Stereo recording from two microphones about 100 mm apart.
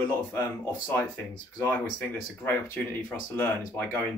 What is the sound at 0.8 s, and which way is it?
Speech, 15° left (ahead or behind).